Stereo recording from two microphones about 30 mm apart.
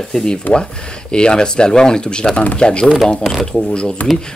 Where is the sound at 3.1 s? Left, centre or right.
Centre.